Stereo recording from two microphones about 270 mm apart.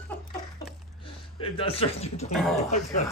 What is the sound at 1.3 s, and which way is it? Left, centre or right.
Speech, centre.